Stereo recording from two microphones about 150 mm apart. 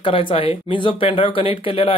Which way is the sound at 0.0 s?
35° left (ahead or behind).